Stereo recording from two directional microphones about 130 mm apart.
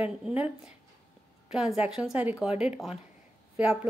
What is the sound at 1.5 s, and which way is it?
A woman's voice, 5° right (ahead or behind).